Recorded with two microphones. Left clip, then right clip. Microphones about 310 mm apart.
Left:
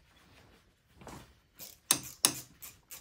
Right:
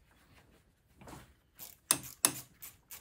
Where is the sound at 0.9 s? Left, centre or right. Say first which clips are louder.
Left 3 dB; centre.